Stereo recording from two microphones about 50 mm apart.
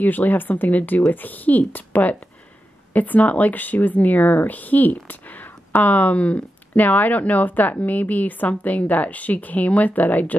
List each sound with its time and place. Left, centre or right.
0.0 s speech: left